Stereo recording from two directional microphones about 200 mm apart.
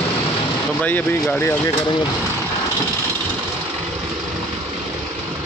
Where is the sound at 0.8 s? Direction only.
10° left (ahead or behind).